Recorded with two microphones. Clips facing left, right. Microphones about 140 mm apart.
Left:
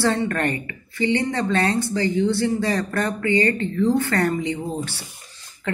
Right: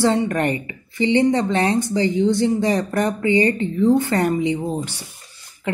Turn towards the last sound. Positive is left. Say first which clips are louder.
# left 1 dB
turn(degrees=-15)  # may be behind; listen again after turning